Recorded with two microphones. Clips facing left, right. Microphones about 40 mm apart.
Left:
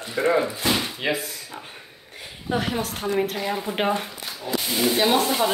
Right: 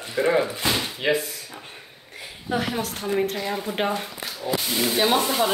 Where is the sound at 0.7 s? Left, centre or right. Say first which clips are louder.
Right 2 dB; centre.